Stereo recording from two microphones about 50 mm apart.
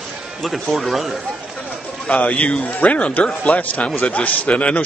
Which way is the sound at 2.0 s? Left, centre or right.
Left.